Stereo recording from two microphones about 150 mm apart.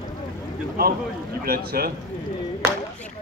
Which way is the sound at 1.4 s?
90° right.